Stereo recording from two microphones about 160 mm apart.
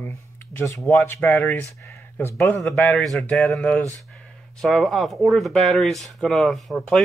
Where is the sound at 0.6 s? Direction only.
20° left (ahead or behind).